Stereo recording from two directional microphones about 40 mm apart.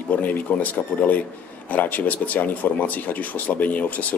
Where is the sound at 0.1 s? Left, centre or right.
Left.